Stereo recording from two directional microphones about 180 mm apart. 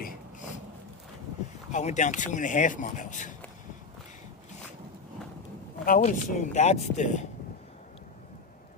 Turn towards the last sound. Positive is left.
turn(degrees=40)  # may be behind; listen again after turning